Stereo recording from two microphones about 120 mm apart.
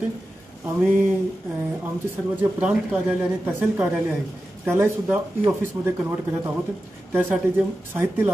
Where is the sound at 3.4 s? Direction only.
15° right (ahead or behind).